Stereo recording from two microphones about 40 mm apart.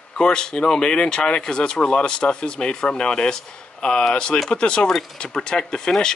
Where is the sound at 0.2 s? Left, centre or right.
Centre.